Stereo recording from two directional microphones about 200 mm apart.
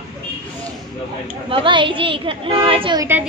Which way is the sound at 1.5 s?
25° right (ahead or behind).